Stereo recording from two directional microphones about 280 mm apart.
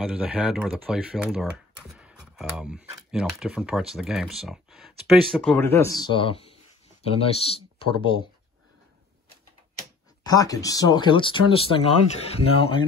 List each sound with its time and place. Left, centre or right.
0.1 s speech: centre
10.2 s speech: centre